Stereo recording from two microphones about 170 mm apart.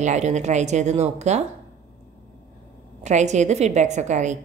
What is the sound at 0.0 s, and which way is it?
A woman's voice, 45° right (ahead or behind).